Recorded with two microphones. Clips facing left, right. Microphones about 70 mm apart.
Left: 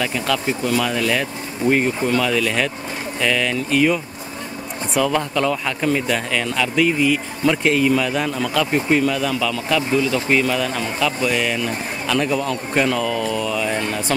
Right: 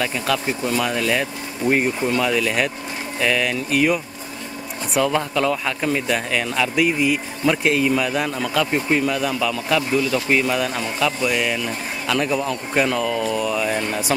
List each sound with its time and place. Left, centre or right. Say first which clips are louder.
0.0 s speech: left 1 dB; centre
9.8 s speech: left 1 dB; left
10.3 s speech: left 1 dB; centre